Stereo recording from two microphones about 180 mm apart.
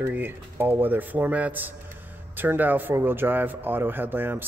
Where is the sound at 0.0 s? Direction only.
10° right (ahead or behind).